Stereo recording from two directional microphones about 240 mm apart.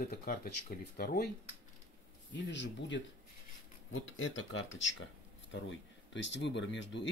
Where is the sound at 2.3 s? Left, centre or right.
Left.